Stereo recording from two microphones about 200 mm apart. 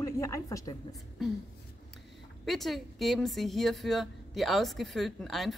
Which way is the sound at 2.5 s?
Centre (ahead or behind).